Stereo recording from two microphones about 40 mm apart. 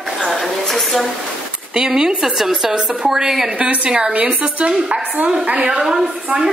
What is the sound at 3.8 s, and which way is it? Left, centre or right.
Speech, right.